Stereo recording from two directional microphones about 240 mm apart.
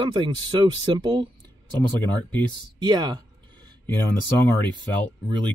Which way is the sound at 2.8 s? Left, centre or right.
Centre.